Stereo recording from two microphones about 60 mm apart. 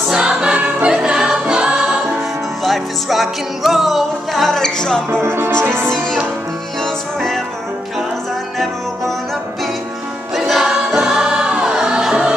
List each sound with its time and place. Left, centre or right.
0.1 s music: centre
2.6 s music: centre
5.1 s music: right
5.9 s music: centre
10.3 s music: centre
10.7 s music: centre